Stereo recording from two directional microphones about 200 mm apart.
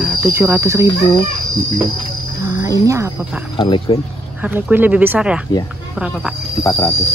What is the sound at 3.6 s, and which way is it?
Speech, 20° left (ahead or behind).